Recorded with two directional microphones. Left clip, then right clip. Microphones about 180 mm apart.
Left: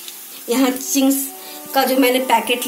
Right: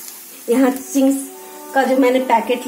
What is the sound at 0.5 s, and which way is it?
Child singing, 35° right (ahead or behind).